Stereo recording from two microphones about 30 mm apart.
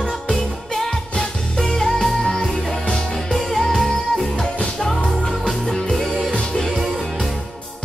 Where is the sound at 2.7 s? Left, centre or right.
Left.